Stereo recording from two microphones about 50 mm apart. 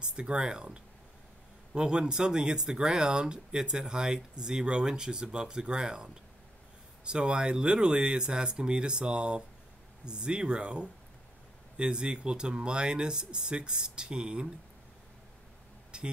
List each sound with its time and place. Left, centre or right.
0.0 s speech: centre
15.9 s speech: centre